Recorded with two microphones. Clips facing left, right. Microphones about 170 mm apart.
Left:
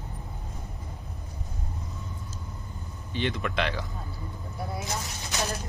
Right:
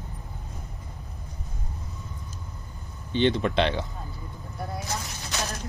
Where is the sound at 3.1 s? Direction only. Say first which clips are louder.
Right 7 dB; 25° right (ahead or behind).